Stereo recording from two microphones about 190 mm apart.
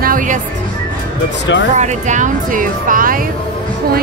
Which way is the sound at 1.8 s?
40° right (ahead or behind).